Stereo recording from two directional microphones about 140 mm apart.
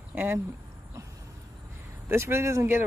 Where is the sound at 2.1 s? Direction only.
15° right (ahead or behind).